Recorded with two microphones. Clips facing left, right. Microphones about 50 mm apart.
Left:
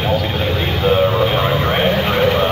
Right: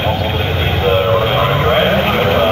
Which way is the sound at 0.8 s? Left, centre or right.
Right.